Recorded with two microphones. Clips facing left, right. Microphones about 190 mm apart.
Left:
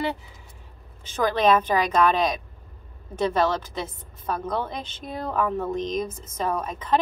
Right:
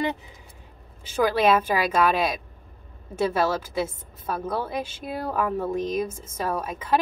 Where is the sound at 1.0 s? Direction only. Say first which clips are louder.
Even; 10° right (ahead or behind).